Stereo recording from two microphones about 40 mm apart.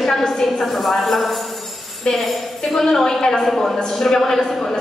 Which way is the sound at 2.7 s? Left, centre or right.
Centre.